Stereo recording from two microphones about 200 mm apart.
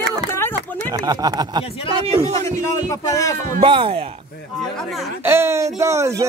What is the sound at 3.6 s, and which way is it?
Speech, 25° right (ahead or behind).